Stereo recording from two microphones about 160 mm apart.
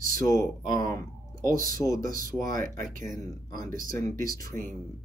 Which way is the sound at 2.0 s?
55° right (ahead or behind).